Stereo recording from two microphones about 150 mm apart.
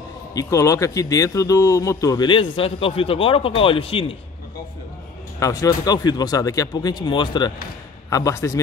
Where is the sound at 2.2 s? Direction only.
35° left (ahead or behind).